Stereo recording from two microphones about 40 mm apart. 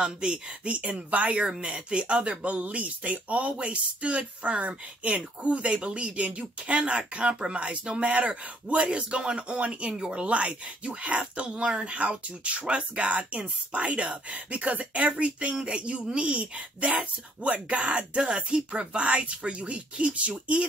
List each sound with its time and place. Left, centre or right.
0.0 s speech: right